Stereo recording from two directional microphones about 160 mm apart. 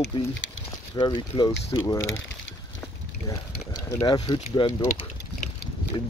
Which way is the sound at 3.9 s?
25° left (ahead or behind).